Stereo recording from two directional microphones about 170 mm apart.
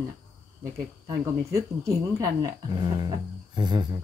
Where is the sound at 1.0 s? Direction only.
20° right (ahead or behind).